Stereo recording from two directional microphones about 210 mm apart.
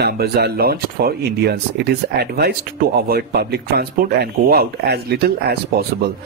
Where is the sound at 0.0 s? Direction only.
50° right (ahead or behind).